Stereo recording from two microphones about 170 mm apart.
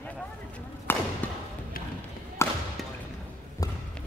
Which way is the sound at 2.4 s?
15° left (ahead or behind).